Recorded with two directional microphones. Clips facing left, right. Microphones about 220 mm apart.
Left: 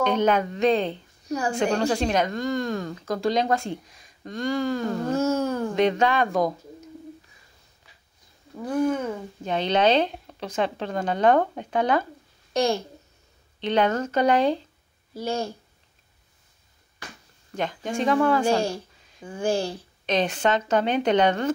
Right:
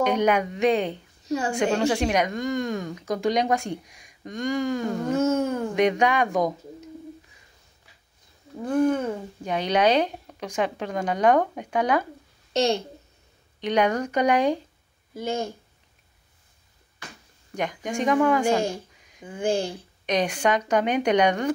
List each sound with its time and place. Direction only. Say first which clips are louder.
0.0 s a child's voice: even; 10° right (ahead or behind)
9.0 s a woman's voice: right 1 dB; 10° right (ahead or behind)
17.6 s a woman's voice: even; 15° right (ahead or behind)